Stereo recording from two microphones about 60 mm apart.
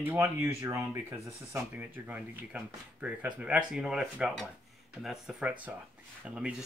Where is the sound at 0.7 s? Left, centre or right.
Right.